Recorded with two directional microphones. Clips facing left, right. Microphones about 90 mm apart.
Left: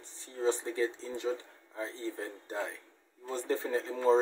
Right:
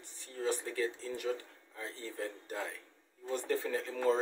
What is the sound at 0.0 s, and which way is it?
Speech, 30° left (ahead or behind).